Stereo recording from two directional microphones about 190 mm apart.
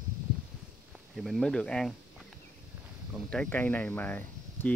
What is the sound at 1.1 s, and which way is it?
Speech, centre (ahead or behind).